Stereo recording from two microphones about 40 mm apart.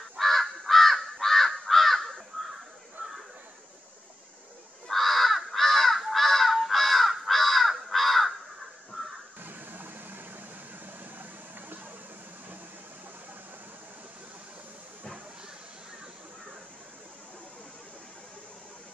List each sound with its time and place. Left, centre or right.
0.2 s crow: centre
4.8 s crow: centre
9.0 s music: centre
9.4 s a sound: right